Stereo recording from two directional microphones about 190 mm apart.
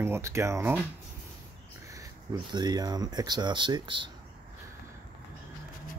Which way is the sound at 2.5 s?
20° right (ahead or behind).